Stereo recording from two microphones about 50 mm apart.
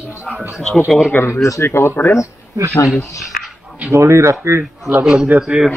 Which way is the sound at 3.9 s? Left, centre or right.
Right.